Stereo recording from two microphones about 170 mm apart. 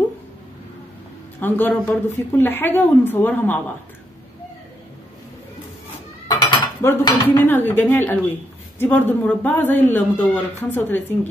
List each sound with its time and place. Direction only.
1.4 s speech: 10° left (ahead or behind)
6.2 s dishes: 20° left (ahead or behind)
7.2 s speech: 10° left (ahead or behind)